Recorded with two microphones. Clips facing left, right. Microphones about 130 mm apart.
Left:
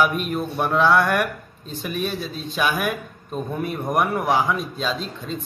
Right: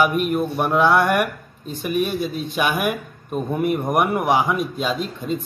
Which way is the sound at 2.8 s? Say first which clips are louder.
Right 2 dB; 10° right (ahead or behind).